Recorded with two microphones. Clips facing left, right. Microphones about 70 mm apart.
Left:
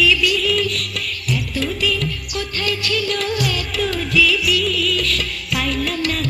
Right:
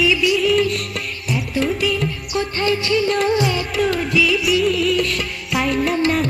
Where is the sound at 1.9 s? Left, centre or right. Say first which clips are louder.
Right 2 dB; right.